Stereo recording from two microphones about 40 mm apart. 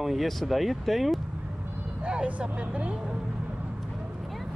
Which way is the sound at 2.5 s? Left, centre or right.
Right.